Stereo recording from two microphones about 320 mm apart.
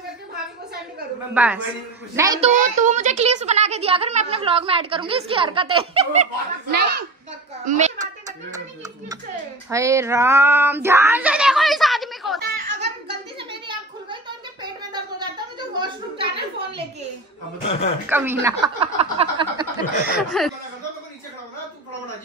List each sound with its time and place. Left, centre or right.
1.3 s a woman's voice: centre
2.5 s a woman's voice: right
6.7 s a child's voice: right
9.7 s speech: centre
12.4 s a sound: right
13.4 s a sound: centre
18.0 s a woman's voice: centre
20.2 s speech: centre